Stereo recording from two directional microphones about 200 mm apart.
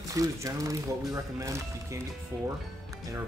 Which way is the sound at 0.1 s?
15° right (ahead or behind).